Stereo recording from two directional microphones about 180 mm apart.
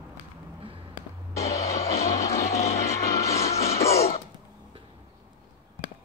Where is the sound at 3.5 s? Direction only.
35° left (ahead or behind).